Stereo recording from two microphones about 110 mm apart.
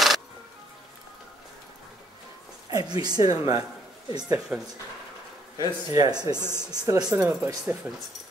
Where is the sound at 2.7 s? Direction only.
35° right (ahead or behind).